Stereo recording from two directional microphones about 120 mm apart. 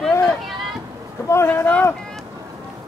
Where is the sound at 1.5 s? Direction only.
15° left (ahead or behind).